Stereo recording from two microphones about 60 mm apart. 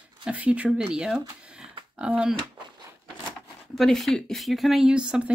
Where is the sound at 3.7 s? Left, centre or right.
Centre.